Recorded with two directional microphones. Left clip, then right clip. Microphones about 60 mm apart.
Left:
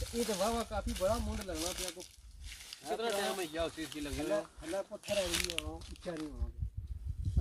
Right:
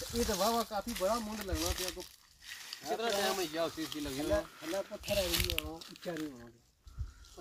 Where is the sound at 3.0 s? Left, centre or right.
Left.